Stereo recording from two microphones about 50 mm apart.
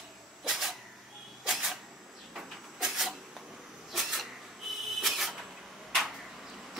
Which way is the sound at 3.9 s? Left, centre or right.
Centre.